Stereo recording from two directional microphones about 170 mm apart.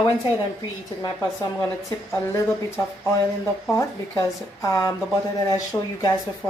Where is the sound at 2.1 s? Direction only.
15° left (ahead or behind).